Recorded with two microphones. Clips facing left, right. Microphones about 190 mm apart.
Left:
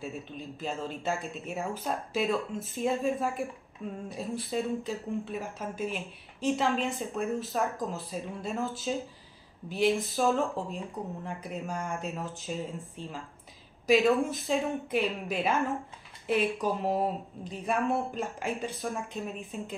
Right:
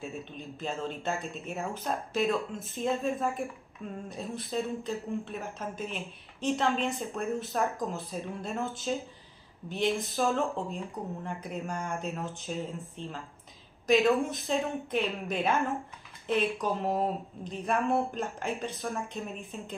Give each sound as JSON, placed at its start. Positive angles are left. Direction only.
{"t": 0.0, "sound": "speech", "side_deg": 5}